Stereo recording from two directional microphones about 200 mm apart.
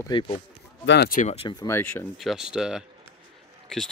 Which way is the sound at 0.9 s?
55° left (ahead or behind).